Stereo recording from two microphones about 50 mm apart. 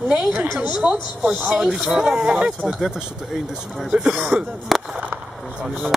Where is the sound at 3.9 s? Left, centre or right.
Centre.